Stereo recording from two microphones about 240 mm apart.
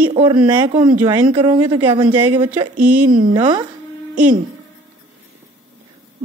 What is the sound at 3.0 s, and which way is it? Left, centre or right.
Speech, right.